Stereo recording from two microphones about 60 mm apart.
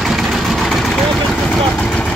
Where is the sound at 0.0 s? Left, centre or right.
Centre.